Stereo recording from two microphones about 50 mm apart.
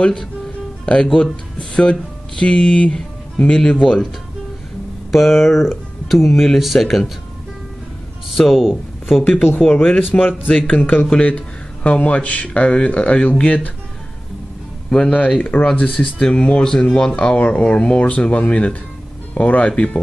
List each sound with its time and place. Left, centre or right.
0.8 s speech: centre
5.1 s speech: centre
8.4 s speech: centre
9.2 s speech: left
9.6 s speech: centre
10.1 s speech: left
15.0 s speech: left